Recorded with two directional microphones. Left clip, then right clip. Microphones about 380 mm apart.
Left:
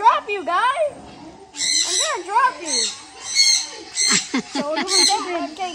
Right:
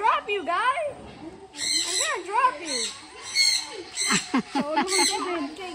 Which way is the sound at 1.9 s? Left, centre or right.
Left.